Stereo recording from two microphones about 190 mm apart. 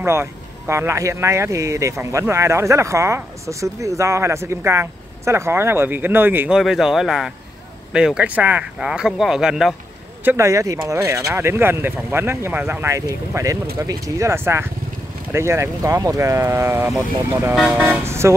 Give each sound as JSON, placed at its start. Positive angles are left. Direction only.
{"t": 0.0, "sound": "speech", "side_deg": -15}
{"t": 10.2, "sound": "speech", "side_deg": -15}